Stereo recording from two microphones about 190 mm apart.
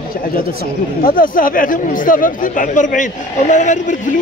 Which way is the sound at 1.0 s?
45° left (ahead or behind).